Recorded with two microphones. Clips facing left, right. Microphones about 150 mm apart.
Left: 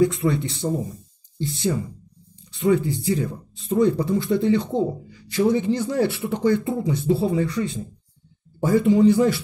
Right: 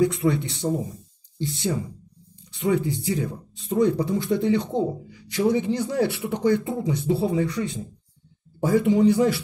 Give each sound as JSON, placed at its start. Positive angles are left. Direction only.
{"t": 0.0, "sound": "a man's voice", "side_deg": -15}
{"t": 2.6, "sound": "a man's voice", "side_deg": -15}